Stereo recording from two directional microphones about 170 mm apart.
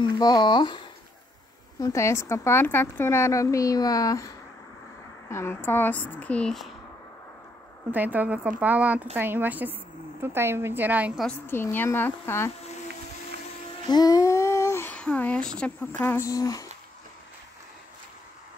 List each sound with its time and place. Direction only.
0.0 s speech: 25° left (ahead or behind)
5.3 s speech: 15° left (ahead or behind)
7.9 s speech: 10° right (ahead or behind)
11.2 s speech: 10° left (ahead or behind)
13.8 s speech: 25° left (ahead or behind)